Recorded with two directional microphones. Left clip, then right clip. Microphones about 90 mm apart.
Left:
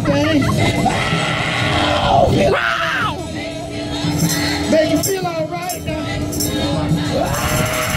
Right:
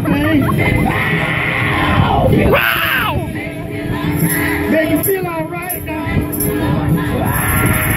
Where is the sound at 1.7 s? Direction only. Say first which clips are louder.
Left 3 dB; 50° left (ahead or behind).